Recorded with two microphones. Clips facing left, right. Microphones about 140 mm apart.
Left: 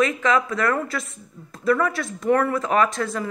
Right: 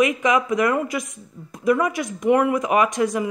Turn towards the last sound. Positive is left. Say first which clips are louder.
# right 2 dB
turn(degrees=-15)  # may be behind; listen again after turning